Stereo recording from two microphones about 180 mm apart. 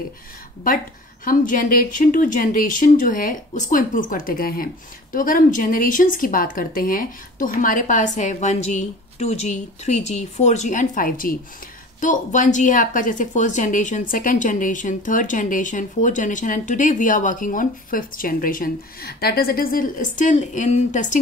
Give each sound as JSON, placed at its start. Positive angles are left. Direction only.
{"t": 1.2, "sound": "a woman's voice", "side_deg": 50}